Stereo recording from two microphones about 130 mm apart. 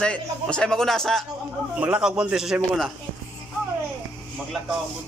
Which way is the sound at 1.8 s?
10° right (ahead or behind).